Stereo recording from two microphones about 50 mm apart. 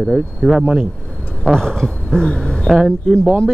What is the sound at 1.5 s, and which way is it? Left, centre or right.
Speech, centre.